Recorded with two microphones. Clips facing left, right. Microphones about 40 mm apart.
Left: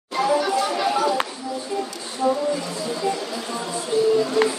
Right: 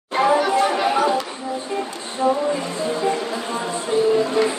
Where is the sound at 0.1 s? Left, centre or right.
Right.